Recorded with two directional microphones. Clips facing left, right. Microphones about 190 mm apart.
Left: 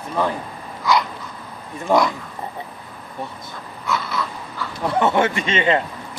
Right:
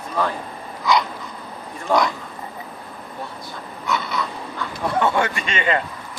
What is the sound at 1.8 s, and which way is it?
Speech, centre (ahead or behind).